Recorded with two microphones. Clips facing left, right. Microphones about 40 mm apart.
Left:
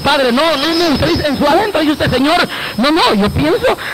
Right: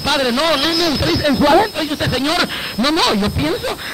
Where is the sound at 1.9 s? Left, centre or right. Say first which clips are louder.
Left 6 dB; centre.